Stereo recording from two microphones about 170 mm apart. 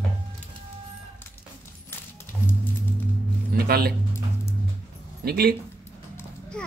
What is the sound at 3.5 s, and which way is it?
Speech, 65° right (ahead or behind).